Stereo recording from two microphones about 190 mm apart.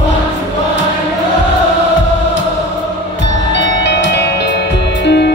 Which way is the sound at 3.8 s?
65° left (ahead or behind).